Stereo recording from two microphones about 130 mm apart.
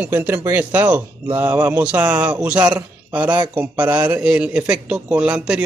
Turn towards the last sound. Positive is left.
turn(degrees=-5)  # may be behind; listen again after turning